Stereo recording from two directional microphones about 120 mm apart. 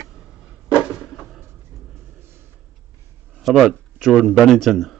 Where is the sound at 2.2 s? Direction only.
20° right (ahead or behind).